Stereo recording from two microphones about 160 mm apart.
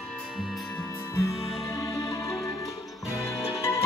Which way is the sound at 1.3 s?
35° left (ahead or behind).